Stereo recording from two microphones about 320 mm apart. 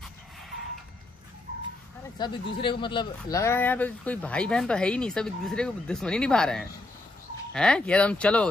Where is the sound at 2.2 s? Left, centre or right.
Centre.